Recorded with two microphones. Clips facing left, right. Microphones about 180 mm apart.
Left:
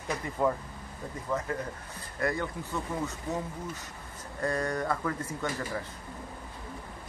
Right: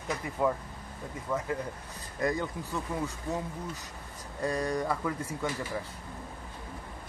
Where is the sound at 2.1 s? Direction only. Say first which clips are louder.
Right 1 dB; 20° right (ahead or behind).